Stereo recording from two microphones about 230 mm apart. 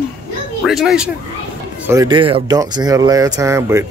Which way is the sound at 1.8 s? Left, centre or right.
Centre.